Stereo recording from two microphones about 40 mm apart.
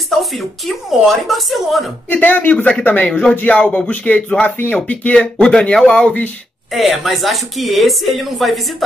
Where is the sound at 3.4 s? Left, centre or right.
Left.